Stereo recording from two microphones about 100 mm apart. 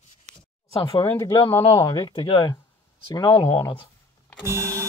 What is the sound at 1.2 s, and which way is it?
Speech, 45° left (ahead or behind).